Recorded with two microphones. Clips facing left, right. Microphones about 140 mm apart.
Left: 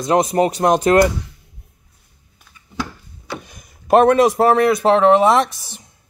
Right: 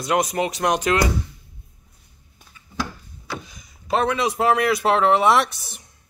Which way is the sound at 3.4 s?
55° left (ahead or behind).